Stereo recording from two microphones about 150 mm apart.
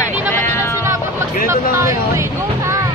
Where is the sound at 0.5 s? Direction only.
20° left (ahead or behind).